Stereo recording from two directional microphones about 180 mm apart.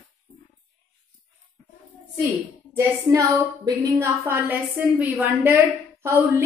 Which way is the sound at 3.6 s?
20° right (ahead or behind).